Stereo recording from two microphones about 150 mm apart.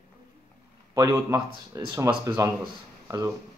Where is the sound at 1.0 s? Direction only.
20° right (ahead or behind).